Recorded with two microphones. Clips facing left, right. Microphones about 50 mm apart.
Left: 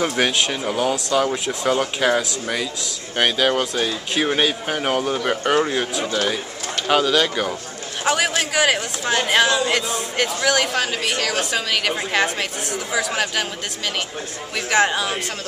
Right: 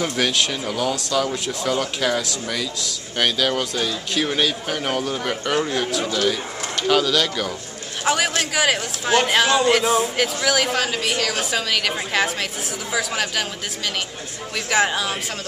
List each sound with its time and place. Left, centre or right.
0.0 s speech: centre
1.3 s speech: centre
1.7 s speech: centre
8.0 s a man's voice: centre
14.7 s speech: centre